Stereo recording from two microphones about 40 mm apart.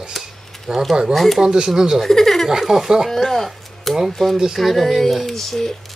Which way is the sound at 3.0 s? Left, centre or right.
Centre.